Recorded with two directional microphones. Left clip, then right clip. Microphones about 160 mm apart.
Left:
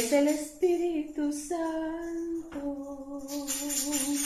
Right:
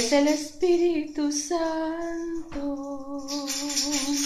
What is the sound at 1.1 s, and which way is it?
Speech, 15° right (ahead or behind).